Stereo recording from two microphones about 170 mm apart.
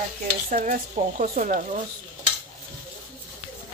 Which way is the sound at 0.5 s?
55° right (ahead or behind).